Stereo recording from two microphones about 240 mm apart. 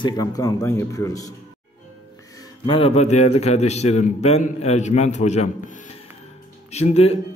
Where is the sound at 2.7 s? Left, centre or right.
Left.